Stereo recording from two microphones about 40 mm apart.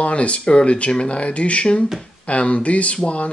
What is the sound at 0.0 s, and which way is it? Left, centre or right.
Speech, left.